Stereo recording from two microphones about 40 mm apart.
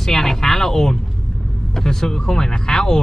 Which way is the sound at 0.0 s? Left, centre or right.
Centre.